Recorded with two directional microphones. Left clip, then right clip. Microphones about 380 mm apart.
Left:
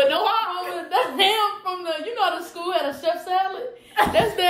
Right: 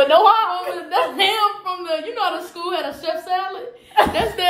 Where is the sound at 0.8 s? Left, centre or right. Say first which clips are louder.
Right 1 dB; centre.